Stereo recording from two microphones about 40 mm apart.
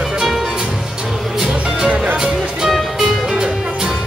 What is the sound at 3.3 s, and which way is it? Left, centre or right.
Music, centre.